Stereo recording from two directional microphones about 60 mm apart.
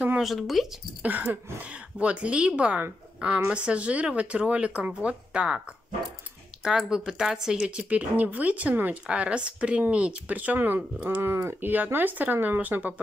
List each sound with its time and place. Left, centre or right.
0.2 s speech: centre
1.0 s speech: right
6.6 s speech: centre; by 13.0 s right